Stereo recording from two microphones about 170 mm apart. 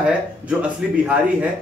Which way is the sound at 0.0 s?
5° right (ahead or behind).